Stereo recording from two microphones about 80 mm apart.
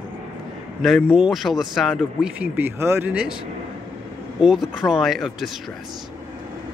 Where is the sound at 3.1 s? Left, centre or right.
Centre.